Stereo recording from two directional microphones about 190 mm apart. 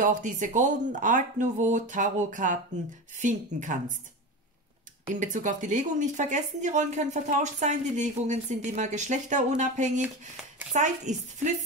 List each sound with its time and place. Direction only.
0.0 s speech: 40° right (ahead or behind)
5.1 s speech: 45° right (ahead or behind)